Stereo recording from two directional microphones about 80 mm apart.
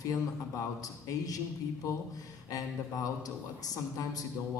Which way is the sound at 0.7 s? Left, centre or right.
Left.